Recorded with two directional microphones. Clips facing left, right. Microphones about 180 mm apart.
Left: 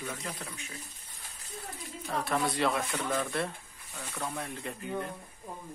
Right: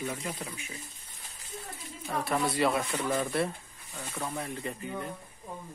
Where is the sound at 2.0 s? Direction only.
Centre (ahead or behind).